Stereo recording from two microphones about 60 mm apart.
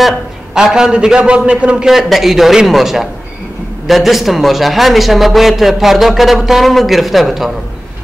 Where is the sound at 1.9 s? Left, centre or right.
Centre.